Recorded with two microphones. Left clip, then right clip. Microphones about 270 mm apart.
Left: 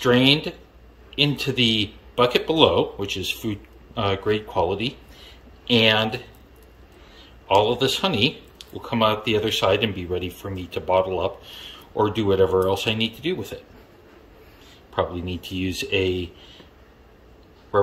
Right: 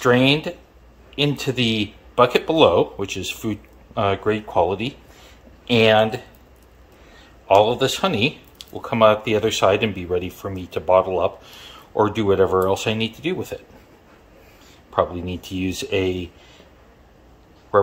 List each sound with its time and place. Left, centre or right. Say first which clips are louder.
0.0 s speech: right 1 dB; centre
7.4 s speech: right 3 dB; centre
15.0 s speech: right 4 dB; centre